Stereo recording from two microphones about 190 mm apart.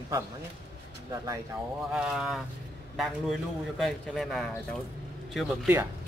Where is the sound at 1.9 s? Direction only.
5° right (ahead or behind).